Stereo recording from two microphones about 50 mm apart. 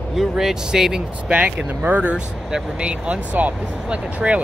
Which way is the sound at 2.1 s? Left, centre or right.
Centre.